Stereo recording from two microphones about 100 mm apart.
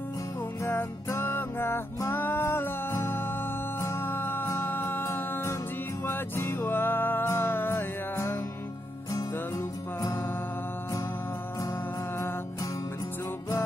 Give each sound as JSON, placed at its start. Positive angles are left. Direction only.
{"t": 0.7, "sound": "music", "side_deg": 25}